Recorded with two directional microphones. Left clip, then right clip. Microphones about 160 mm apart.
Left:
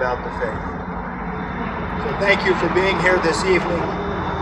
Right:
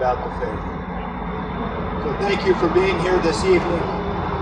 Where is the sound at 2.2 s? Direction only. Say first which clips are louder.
Left 2 dB; 25° left (ahead or behind).